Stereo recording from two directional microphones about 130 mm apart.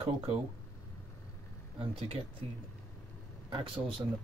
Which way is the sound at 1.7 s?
45° right (ahead or behind).